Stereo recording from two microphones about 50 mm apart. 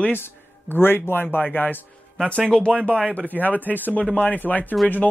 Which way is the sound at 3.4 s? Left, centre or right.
Left.